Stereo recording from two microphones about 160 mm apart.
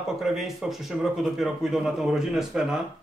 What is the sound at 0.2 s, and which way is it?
Speech, centre (ahead or behind).